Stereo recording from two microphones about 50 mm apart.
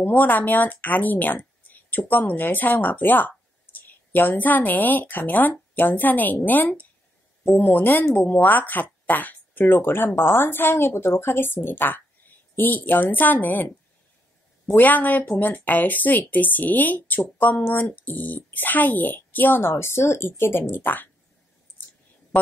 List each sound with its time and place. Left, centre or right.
0.0 s speech: left
19.6 s speech: left
20.7 s speech: left